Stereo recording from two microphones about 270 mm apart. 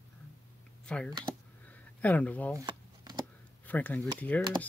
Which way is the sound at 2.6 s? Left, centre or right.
Centre.